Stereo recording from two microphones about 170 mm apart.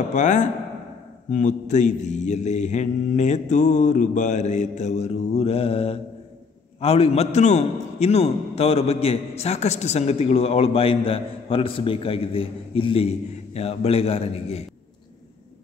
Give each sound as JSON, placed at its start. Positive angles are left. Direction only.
{"t": 0.1, "sound": "mantra", "side_deg": 45}
{"t": 6.8, "sound": "a man's voice", "side_deg": 35}